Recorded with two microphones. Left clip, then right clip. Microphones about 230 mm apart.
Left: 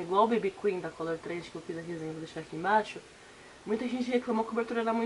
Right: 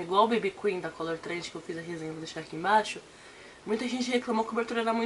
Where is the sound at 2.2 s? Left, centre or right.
Centre.